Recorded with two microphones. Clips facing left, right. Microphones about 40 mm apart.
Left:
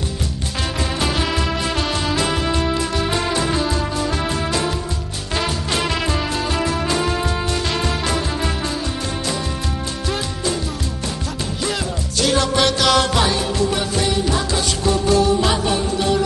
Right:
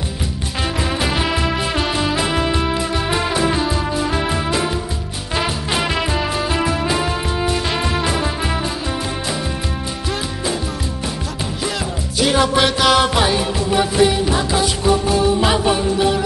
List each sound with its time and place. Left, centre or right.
1.0 s music: centre
10.0 s music: centre
11.6 s music: centre